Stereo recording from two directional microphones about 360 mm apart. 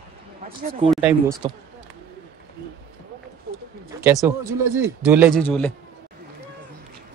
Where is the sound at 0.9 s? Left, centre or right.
Centre.